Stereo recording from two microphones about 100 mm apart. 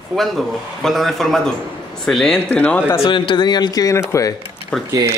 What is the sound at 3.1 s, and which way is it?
Speech, 50° left (ahead or behind).